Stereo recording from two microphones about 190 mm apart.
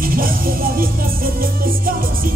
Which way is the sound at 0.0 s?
50° right (ahead or behind).